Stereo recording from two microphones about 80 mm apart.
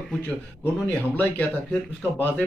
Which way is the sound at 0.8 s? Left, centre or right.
Centre.